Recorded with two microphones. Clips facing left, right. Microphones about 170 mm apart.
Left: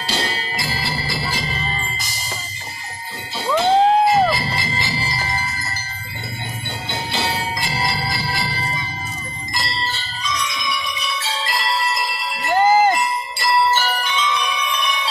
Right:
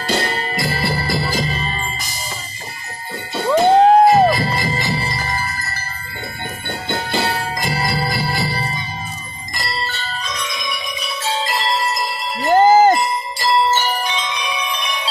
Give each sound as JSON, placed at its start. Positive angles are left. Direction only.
{"t": 0.0, "sound": "music", "side_deg": -55}
{"t": 3.3, "sound": "music", "side_deg": -50}
{"t": 6.9, "sound": "jingle bell", "side_deg": -50}
{"t": 9.5, "sound": "bell", "side_deg": -55}
{"t": 11.2, "sound": "wind chime", "side_deg": -40}